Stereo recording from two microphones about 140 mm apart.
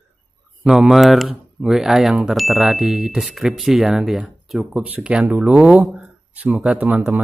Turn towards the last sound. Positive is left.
turn(degrees=-10)  # may be behind; listen again after turning